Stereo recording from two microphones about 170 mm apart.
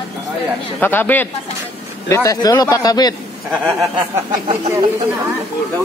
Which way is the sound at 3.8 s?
30° right (ahead or behind).